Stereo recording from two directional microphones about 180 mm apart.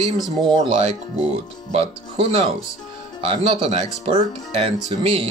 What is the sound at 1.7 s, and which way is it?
Speech, 35° right (ahead or behind).